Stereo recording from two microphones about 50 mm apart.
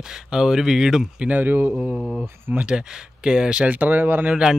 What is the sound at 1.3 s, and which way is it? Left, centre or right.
Speech, right.